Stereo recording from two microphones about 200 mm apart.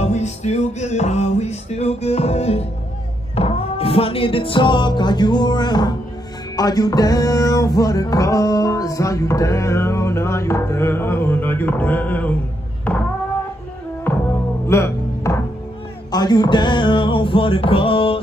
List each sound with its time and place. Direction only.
0.0 s music: 35° left (ahead or behind); by 12.4 s 10° left (ahead or behind)
14.7 s music: 15° left (ahead or behind)